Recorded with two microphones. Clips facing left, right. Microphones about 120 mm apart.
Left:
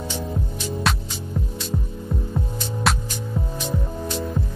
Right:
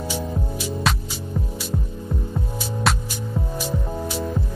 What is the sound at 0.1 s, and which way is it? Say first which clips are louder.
Music: right 1 dB; 10° right (ahead or behind).